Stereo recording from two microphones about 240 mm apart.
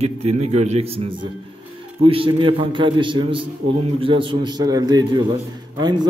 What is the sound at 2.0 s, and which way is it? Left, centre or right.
A man's voice, right.